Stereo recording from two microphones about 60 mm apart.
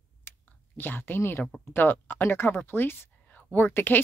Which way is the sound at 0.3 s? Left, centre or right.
Left.